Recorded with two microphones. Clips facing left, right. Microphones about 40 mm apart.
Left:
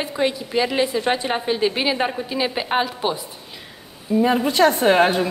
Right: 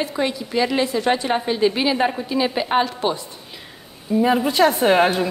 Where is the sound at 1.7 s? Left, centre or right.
Left; by 5.3 s centre.